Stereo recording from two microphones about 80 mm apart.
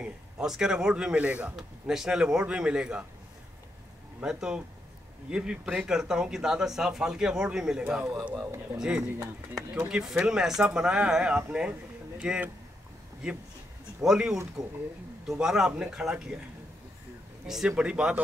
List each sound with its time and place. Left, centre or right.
0.0 s speech: centre
1.6 s speech: centre
4.2 s speech: centre
14.0 s speech: centre
17.5 s speech: centre